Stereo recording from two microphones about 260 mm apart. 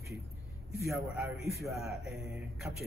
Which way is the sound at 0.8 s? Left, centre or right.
Centre.